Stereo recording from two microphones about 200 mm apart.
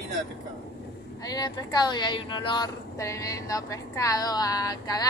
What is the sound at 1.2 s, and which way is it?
Speech, 20° left (ahead or behind).